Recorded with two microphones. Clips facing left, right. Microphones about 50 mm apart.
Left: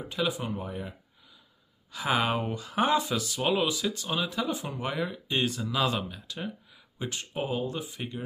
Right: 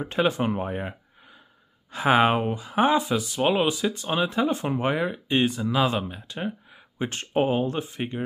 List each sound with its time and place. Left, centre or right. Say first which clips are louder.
0.0 s speech: right 7 dB; right
2.5 s speech: right 4 dB; centre